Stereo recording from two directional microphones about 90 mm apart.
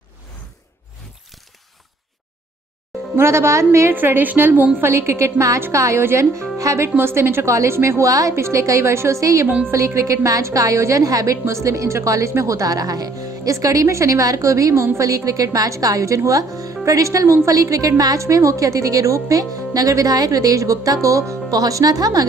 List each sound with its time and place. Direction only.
3.2 s speech: 30° right (ahead or behind)
3.9 s speech: 20° right (ahead or behind); by 22.2 s 45° right (ahead or behind)